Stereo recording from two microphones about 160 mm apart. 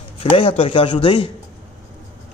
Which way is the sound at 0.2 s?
35° left (ahead or behind).